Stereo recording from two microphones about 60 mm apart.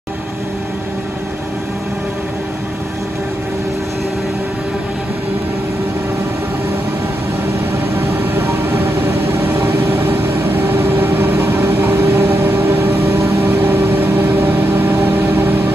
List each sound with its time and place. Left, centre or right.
8.2 s vehicle: right